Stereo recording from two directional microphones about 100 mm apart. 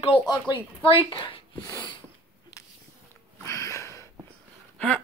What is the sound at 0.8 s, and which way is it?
Speech, 60° left (ahead or behind).